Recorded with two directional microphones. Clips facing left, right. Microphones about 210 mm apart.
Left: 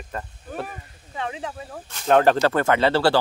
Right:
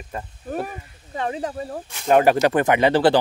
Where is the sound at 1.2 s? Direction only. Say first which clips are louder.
Right 5 dB; 40° right (ahead or behind).